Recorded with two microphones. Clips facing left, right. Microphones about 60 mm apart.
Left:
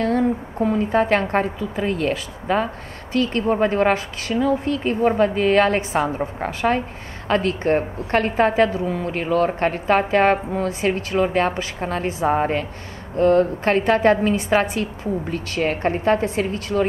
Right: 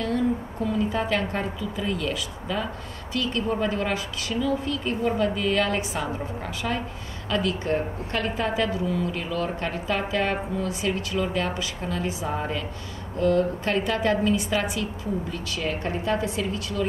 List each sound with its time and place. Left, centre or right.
0.0 s a woman's voice: left